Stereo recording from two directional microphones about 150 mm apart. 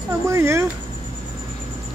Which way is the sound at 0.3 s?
20° right (ahead or behind).